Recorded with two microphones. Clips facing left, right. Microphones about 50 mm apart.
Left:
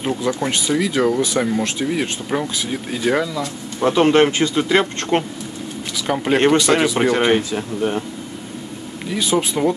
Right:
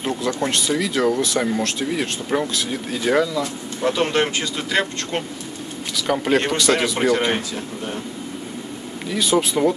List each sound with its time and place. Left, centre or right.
0.0 s speech: centre
3.8 s speech: left
5.9 s speech: centre
9.1 s speech: centre